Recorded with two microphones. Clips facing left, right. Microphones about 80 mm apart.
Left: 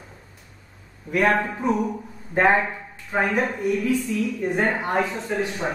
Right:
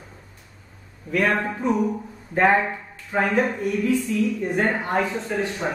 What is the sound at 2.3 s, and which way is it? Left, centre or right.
A woman's voice, centre.